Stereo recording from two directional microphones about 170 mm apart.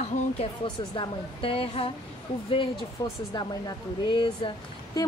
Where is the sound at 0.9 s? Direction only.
30° left (ahead or behind).